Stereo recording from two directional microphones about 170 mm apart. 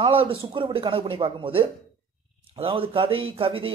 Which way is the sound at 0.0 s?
30° right (ahead or behind).